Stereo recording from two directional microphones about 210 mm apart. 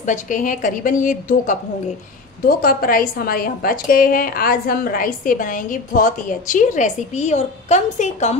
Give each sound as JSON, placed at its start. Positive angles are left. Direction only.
{"t": 0.0, "sound": "a woman's voice", "side_deg": 35}